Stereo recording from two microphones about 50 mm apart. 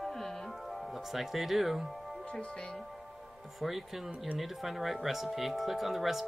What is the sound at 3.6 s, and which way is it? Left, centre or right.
Speech, centre.